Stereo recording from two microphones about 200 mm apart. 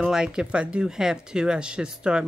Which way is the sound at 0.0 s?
5° right (ahead or behind).